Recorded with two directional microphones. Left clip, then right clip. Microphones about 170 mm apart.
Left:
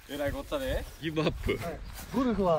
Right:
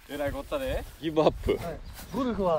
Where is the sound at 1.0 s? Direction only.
15° right (ahead or behind).